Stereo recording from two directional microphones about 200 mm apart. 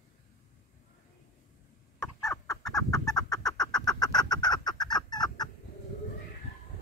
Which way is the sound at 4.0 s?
20° left (ahead or behind).